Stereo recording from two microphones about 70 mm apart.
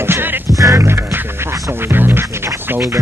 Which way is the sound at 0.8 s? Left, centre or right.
Right.